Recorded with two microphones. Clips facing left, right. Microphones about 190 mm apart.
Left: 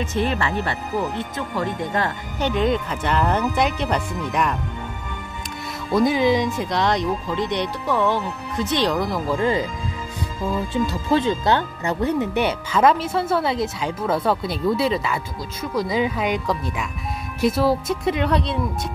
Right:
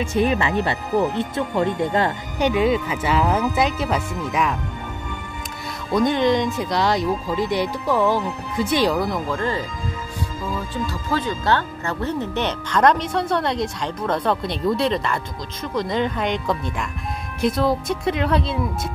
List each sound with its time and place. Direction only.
0.0 s speech: 15° right (ahead or behind)
2.3 s speech: 10° right (ahead or behind)
5.9 s speech: 5° left (ahead or behind)
9.3 s speech: 15° left (ahead or behind)
10.7 s speech: 20° left (ahead or behind); by 18.6 s centre (ahead or behind)